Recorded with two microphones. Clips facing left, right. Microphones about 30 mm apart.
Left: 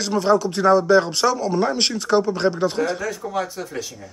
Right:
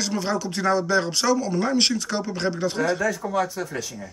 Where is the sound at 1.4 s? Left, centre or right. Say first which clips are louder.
Left 3 dB; left.